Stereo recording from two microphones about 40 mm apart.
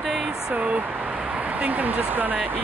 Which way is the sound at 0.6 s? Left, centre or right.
Right.